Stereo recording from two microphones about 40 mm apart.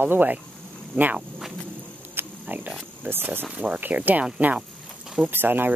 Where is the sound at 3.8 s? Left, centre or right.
Right.